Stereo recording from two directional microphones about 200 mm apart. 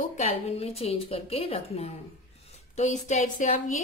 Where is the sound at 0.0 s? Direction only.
35° left (ahead or behind).